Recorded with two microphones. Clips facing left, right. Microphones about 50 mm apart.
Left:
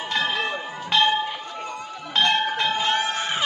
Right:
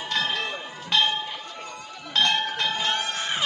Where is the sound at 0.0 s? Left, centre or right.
Centre.